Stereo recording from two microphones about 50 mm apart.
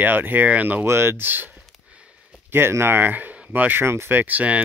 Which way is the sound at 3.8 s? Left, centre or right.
Right.